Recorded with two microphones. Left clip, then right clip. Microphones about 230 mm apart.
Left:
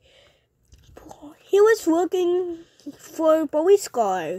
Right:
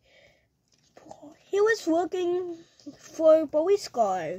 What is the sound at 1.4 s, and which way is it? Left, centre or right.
Speech, left.